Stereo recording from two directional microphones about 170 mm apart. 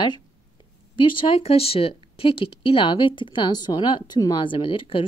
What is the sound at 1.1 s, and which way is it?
Speech, 35° left (ahead or behind).